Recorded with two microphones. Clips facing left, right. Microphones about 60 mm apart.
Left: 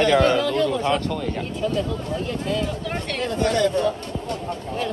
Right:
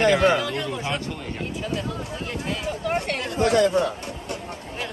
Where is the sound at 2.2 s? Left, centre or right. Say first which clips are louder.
Left 3 dB; right.